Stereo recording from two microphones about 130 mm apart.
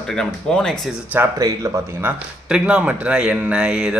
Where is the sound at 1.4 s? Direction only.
20° right (ahead or behind).